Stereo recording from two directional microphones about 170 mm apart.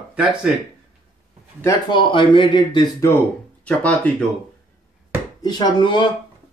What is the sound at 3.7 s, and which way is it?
Speech, 5° left (ahead or behind).